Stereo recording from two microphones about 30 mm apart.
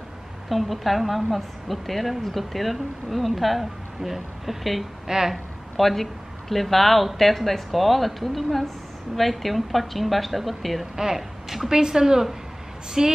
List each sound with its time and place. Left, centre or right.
0.5 s a woman's voice: centre
5.3 s a woman's voice: centre
11.7 s a woman's voice: centre